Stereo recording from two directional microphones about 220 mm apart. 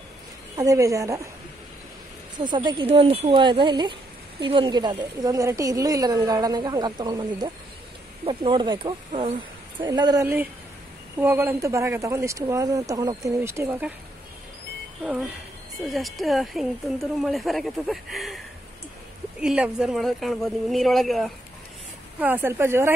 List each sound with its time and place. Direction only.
0.6 s speech: 15° right (ahead or behind)
2.5 s a woman's voice: 20° right (ahead or behind)
15.9 s speech: centre (ahead or behind)
19.4 s speech: 5° right (ahead or behind)